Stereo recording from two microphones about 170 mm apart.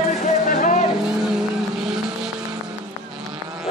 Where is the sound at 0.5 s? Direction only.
55° left (ahead or behind).